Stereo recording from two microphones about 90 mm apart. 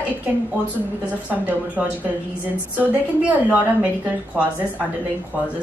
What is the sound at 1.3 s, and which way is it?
A woman's voice, 20° right (ahead or behind).